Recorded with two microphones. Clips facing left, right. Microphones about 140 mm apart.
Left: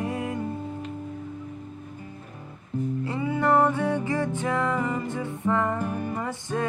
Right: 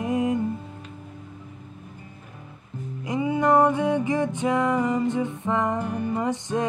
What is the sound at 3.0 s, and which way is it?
Music, 15° right (ahead or behind).